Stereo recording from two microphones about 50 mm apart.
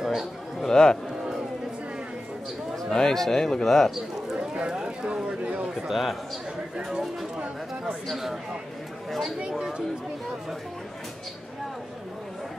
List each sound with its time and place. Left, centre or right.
0.0 s a sound: centre
0.6 s music: centre
2.7 s a man's voice: centre
3.9 s a sound: centre
4.6 s speech: centre
5.9 s speech: centre
9.4 s speech: centre